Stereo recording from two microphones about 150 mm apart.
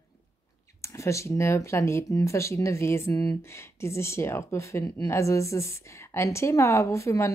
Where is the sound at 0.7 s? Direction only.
20° left (ahead or behind).